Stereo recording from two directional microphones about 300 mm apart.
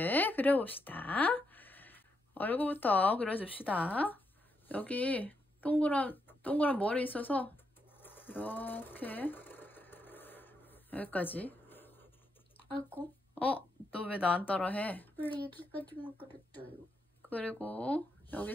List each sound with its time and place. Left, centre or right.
0.0 s speech: centre
8.0 s sewing machine: centre
12.6 s drip: centre
13.3 s speech: centre
17.3 s speech: centre